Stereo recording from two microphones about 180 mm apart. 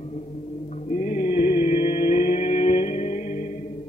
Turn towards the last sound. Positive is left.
turn(degrees=40)  # may be behind; listen again after turning